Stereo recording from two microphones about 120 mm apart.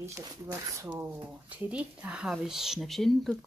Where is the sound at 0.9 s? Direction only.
15° right (ahead or behind).